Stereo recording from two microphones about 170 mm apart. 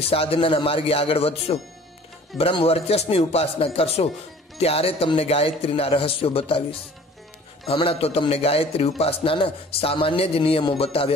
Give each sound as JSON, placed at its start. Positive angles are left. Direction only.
{"t": 0.1, "sound": "a man's voice", "side_deg": 35}